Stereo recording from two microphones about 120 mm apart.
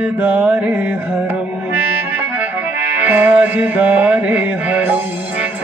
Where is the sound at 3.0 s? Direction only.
15° right (ahead or behind).